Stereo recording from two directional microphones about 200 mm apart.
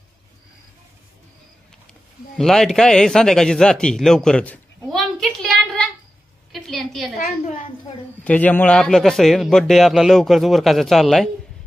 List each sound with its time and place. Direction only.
2.3 s a man's voice: centre (ahead or behind)
6.5 s a sound: centre (ahead or behind)
7.2 s a woman's voice: 35° left (ahead or behind)
8.2 s a man's voice: 5° left (ahead or behind)